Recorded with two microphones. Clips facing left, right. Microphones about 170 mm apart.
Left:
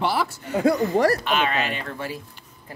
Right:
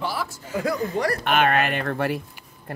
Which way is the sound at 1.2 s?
55° right (ahead or behind).